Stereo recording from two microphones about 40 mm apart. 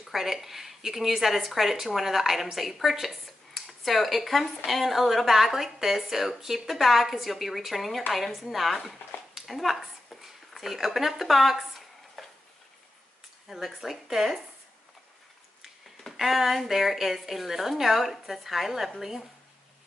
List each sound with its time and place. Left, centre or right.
0.1 s speech: centre
10.2 s a sound: centre
13.5 s speech: centre
16.0 s speech: centre